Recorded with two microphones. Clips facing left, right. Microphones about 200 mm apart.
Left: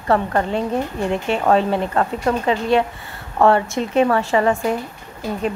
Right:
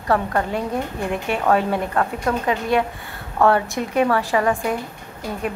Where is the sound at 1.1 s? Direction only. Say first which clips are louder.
Left 2 dB; 25° left (ahead or behind).